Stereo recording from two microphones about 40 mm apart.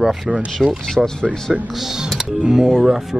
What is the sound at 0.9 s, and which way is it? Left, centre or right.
Speech, centre.